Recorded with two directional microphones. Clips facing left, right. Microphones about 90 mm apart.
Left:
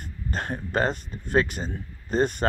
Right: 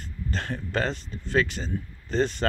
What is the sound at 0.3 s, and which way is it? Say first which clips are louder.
Speech: left 2 dB; 45° left (ahead or behind).